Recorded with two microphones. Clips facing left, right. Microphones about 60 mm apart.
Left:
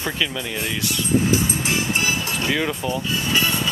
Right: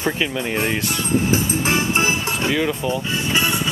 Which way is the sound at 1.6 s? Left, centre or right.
Right.